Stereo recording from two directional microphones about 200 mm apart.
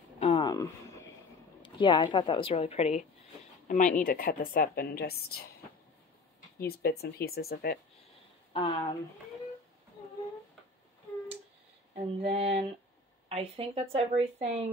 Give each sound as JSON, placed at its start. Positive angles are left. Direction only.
{"t": 0.2, "sound": "a sound", "side_deg": 25}
{"t": 1.6, "sound": "a woman's voice", "side_deg": 25}
{"t": 6.6, "sound": "a woman's voice", "side_deg": 50}
{"t": 8.5, "sound": "speech", "side_deg": 25}
{"t": 11.9, "sound": "a sound", "side_deg": -30}
{"t": 13.3, "sound": "speech", "side_deg": -30}